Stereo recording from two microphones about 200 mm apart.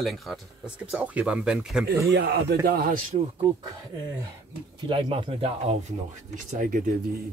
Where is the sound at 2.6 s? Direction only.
50° right (ahead or behind).